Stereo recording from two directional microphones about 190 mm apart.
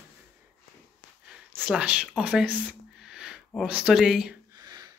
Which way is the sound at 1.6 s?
5° right (ahead or behind).